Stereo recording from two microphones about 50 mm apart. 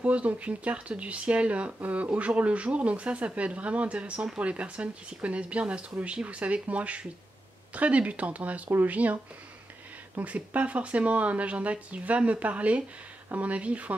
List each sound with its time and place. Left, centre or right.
0.0 s speech: right